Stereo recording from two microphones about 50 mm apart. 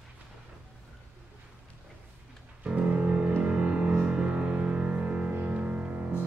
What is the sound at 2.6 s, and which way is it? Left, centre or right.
Music, right.